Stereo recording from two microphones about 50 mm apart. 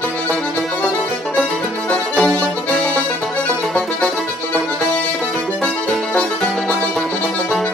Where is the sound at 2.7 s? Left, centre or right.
Centre.